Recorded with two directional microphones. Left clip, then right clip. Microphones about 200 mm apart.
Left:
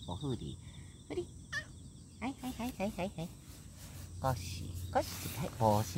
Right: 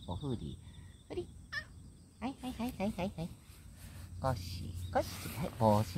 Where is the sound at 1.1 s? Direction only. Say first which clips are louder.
Left 1 dB; 15° right (ahead or behind).